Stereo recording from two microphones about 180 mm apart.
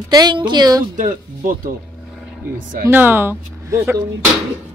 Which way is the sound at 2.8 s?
10° right (ahead or behind).